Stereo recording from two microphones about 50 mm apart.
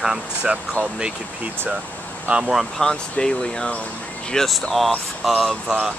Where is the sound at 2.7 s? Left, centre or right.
Centre.